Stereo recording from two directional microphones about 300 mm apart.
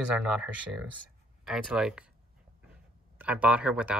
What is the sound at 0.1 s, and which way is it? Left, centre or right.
Speech, centre.